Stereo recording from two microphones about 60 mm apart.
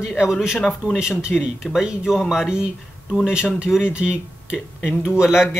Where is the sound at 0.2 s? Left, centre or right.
Centre.